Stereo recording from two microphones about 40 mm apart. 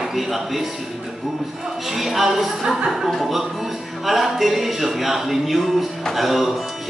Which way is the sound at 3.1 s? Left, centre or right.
Centre.